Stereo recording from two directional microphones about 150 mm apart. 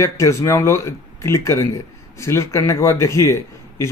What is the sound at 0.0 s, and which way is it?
Speech, 20° left (ahead or behind).